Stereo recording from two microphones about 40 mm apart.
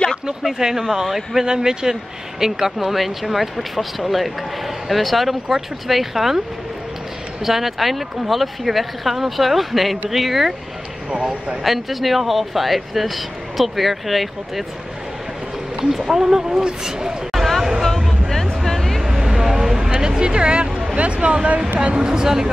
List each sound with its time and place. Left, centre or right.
0.4 s speech: centre
7.4 s speech: centre
11.1 s speech: right
11.6 s speech: centre
15.8 s speech: centre
17.3 s a sound: centre
18.9 s a sound: centre
19.8 s a sound: right
21.7 s speech: right